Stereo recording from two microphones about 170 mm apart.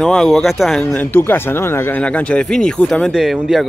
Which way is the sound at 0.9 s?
10° left (ahead or behind).